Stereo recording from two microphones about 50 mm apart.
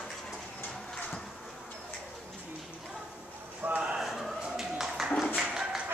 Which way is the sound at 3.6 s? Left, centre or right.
Right.